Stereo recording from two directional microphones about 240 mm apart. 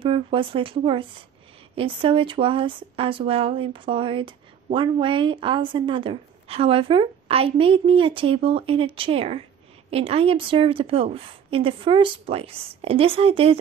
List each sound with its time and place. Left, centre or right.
0.0 s a woman's voice: right